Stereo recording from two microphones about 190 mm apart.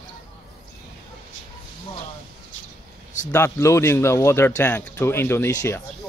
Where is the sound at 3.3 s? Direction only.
15° left (ahead or behind).